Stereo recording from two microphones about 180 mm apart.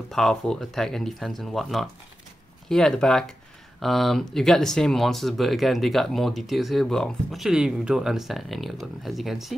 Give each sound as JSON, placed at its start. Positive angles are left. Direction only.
{"t": 0.1, "sound": "speech", "side_deg": 0}